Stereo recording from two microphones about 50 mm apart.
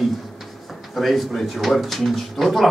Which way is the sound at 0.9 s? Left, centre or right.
Centre.